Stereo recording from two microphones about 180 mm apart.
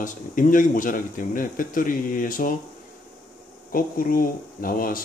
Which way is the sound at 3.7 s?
50° left (ahead or behind).